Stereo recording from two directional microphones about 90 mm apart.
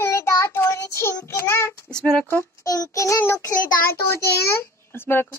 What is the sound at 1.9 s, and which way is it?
Speech, 10° left (ahead or behind).